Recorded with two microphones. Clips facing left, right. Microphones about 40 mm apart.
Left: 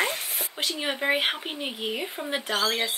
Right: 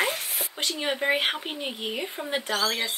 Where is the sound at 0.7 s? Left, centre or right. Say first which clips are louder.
Right 1 dB; centre.